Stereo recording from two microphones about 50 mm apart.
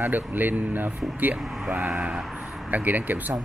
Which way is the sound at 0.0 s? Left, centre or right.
Right.